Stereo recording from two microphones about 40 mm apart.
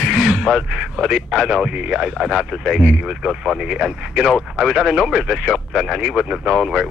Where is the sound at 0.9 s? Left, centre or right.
Centre.